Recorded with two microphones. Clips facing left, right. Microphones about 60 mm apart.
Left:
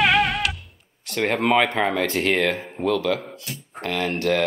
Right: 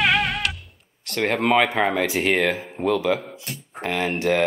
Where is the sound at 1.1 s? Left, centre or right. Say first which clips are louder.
Even; centre.